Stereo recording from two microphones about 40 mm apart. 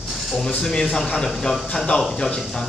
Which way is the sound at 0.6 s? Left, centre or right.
Centre.